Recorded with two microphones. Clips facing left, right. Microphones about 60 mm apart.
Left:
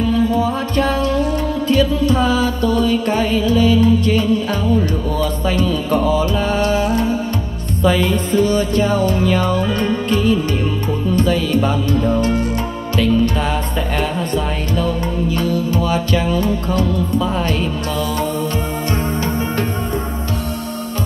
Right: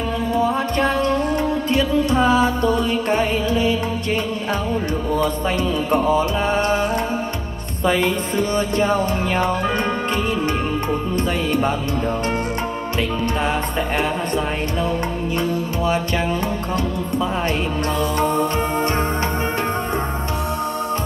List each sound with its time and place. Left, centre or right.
0.4 s music: right